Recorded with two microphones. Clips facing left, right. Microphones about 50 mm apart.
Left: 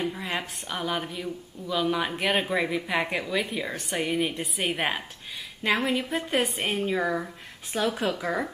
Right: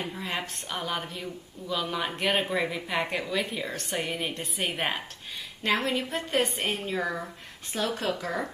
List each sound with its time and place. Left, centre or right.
0.0 s a woman's voice: centre